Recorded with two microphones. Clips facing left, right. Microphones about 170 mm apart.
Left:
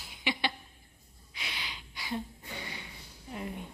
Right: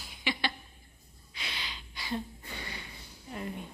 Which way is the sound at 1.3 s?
15° left (ahead or behind).